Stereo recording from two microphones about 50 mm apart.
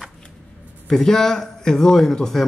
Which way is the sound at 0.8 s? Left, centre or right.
Centre.